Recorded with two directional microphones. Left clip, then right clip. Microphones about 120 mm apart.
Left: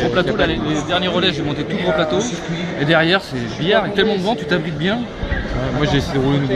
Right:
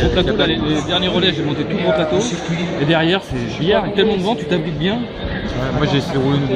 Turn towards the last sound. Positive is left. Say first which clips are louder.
# even
turn(degrees=40)  # may be behind; listen again after turning